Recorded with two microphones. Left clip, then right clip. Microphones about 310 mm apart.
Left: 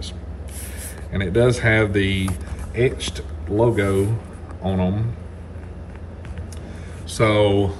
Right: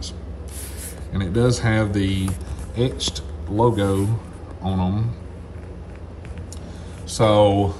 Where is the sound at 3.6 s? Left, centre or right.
Centre.